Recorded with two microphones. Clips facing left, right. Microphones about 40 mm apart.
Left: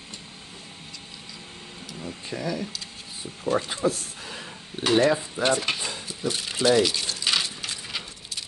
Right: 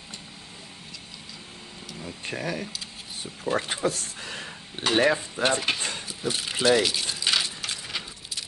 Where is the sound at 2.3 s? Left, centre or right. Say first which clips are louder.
Left 1 dB; right.